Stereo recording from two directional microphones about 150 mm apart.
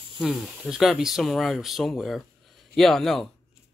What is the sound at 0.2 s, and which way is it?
Speech, centre (ahead or behind).